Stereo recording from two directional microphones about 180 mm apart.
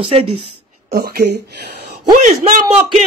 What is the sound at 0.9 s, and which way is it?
A man's voice, 60° right (ahead or behind).